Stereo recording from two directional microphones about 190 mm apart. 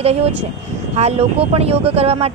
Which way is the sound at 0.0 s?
35° right (ahead or behind).